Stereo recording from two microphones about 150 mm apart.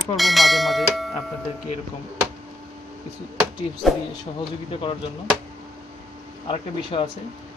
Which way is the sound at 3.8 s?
Centre (ahead or behind).